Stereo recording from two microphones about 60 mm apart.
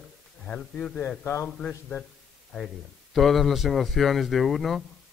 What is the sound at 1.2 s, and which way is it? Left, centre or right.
Speech, left.